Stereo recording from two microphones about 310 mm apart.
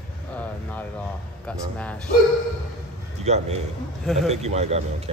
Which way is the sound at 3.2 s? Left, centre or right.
Right.